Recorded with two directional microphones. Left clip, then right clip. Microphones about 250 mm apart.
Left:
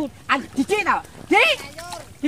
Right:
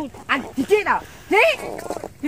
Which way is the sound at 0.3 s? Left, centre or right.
Centre.